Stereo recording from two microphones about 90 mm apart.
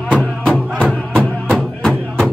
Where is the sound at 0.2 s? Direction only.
10° left (ahead or behind).